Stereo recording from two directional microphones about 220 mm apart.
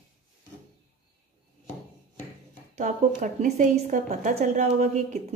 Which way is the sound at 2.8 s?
35° right (ahead or behind).